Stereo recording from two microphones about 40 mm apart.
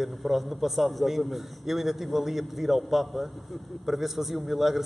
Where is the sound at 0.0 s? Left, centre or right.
Centre.